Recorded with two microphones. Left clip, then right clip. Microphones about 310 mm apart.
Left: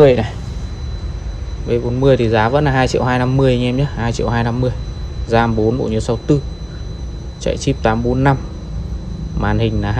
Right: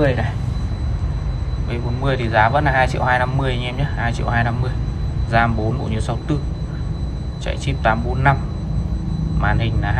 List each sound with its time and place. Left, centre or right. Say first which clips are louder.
0.0 s speech: left 9 dB; centre
1.7 s speech: left 10 dB; centre
7.4 s speech: left 3 dB; centre
9.4 s speech: left 3 dB; centre